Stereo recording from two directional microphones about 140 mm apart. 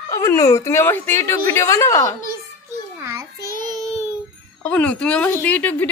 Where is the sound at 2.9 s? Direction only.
20° right (ahead or behind).